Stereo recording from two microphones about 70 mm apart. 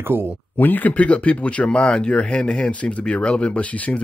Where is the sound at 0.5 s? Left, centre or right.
Left.